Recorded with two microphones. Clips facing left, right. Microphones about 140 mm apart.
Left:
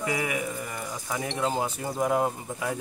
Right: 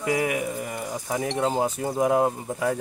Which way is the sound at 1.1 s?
40° right (ahead or behind).